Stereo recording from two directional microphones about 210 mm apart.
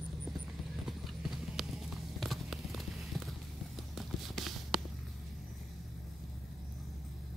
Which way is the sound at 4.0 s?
Centre (ahead or behind).